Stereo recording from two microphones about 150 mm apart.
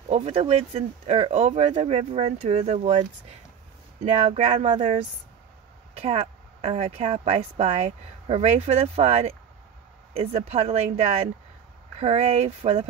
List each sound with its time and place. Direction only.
0.1 s speech: 45° right (ahead or behind)
4.0 s speech: 40° right (ahead or behind)